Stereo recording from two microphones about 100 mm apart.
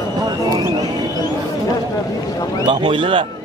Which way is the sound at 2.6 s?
60° right (ahead or behind).